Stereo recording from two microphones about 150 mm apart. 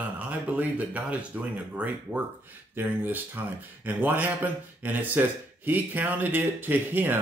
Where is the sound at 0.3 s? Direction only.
10° right (ahead or behind).